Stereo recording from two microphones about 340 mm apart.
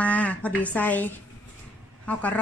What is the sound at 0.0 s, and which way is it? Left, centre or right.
A woman's voice, centre.